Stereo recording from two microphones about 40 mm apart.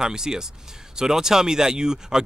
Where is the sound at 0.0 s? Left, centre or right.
Centre.